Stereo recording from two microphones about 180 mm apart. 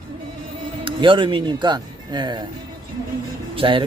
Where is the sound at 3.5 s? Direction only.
30° right (ahead or behind).